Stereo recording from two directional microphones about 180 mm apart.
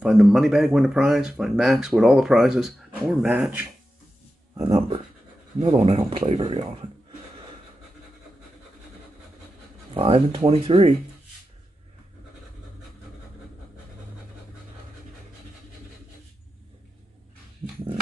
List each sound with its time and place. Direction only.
0.0 s speech: 5° right (ahead or behind)
4.6 s speech: 25° right (ahead or behind)
9.9 s speech: 30° right (ahead or behind)